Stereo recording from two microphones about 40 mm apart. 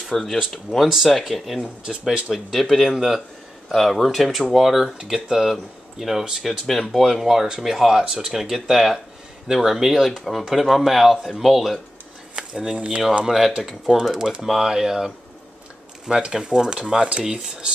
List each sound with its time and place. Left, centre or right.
0.0 s speech: centre
4.9 s speech: centre
6.6 s speech: centre
7.1 s speech: centre
12.4 s a sound: right
13.2 s speech: centre